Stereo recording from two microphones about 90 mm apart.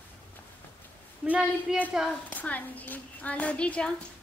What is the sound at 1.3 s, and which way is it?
Speech, 15° right (ahead or behind).